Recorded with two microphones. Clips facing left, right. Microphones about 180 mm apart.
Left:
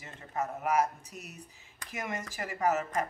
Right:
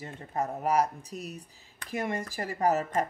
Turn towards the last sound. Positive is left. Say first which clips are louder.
# right 3 dB
turn(degrees=-35)  # may be behind; listen again after turning